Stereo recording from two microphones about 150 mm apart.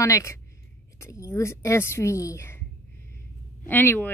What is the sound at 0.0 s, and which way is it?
A woman's voice, 20° left (ahead or behind).